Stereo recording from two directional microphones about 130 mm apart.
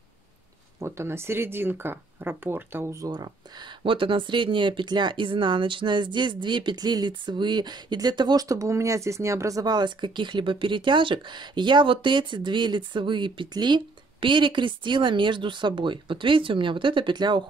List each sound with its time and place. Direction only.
0.7 s speech: 20° right (ahead or behind); by 17.5 s 35° right (ahead or behind)